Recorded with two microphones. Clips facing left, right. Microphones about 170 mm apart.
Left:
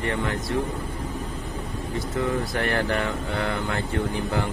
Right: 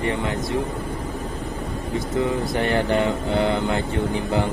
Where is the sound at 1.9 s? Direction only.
20° right (ahead or behind).